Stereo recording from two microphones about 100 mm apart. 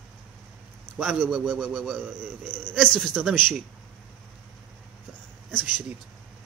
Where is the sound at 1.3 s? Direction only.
15° right (ahead or behind).